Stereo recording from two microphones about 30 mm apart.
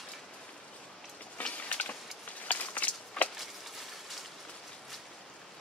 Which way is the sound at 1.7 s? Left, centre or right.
Left.